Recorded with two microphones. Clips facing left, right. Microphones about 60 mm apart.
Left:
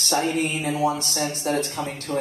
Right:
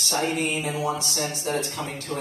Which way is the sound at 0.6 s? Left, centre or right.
Left.